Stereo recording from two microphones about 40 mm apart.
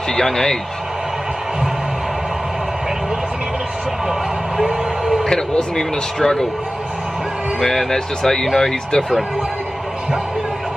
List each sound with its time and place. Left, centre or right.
0.1 s speech: centre
4.1 s a sound: centre
5.5 s speech: centre
7.6 s speech: centre